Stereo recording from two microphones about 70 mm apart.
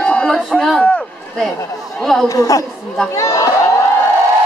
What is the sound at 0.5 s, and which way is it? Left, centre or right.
Speech, centre.